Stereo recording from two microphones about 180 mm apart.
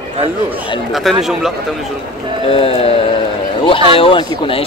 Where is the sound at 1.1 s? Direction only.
Centre (ahead or behind).